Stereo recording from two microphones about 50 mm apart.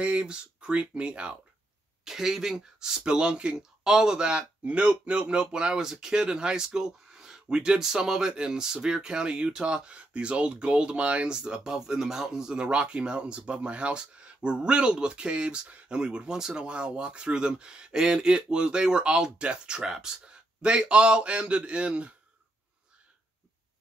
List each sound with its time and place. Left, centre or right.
0.0 s speech: centre
2.0 s speech: centre